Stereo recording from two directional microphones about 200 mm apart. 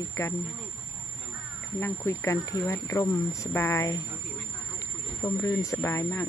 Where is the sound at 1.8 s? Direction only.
15° left (ahead or behind).